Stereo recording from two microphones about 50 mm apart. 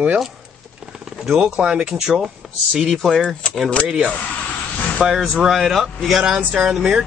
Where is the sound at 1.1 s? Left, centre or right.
Centre.